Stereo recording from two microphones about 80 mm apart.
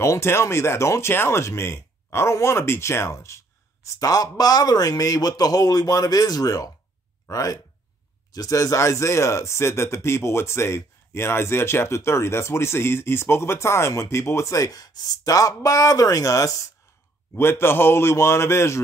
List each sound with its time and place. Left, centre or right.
0.0 s speech: left
17.4 s speech: left